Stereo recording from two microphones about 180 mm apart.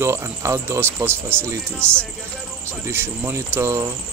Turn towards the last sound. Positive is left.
turn(degrees=-15)  # may be behind; listen again after turning